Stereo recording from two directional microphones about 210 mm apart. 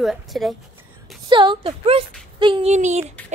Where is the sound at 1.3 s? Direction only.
25° right (ahead or behind).